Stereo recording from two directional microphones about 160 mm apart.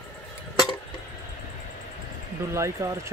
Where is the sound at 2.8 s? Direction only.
20° right (ahead or behind).